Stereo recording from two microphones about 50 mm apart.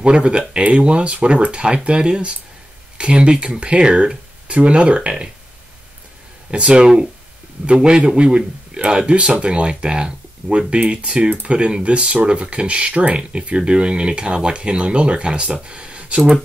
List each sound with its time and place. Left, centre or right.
0.0 s speech: right
6.5 s speech: centre